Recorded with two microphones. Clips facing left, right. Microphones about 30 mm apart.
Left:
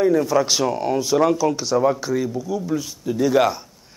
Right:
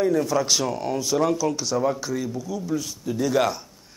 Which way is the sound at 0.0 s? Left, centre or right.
Centre.